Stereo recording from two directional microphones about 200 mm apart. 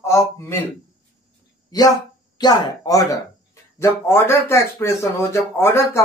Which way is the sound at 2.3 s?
20° left (ahead or behind).